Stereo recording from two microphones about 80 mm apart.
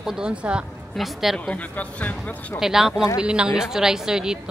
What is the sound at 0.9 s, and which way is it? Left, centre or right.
Speech, centre.